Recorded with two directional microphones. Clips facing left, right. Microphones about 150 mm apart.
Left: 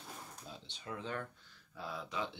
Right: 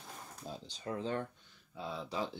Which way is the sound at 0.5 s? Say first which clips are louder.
Right 7 dB; 40° right (ahead or behind).